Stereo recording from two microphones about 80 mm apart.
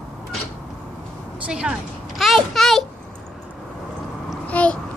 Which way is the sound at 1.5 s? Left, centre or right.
Centre.